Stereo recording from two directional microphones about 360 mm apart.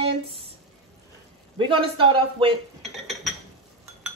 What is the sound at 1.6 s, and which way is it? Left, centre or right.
Speech, centre.